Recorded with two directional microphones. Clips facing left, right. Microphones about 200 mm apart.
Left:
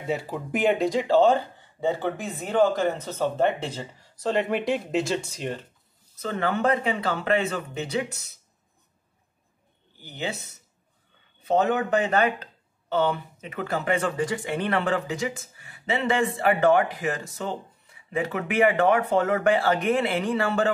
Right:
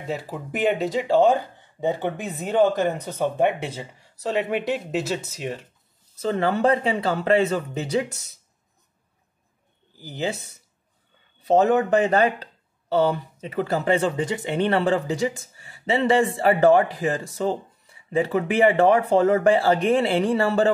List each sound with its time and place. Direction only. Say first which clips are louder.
0.0 s speech: left 1 dB; centre (ahead or behind)
6.1 s speech: right 4 dB; 35° right (ahead or behind)
10.0 s speech: right 4 dB; 35° right (ahead or behind)